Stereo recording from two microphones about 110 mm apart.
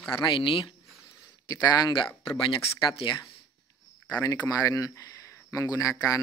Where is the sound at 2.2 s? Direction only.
50° left (ahead or behind).